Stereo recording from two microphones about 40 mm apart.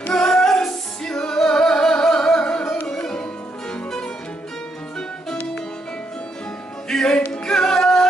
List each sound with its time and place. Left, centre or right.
0.1 s music: centre
6.9 s music: centre